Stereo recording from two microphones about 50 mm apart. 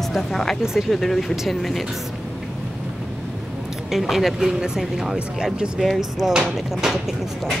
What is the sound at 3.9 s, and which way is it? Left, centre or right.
Speech, centre.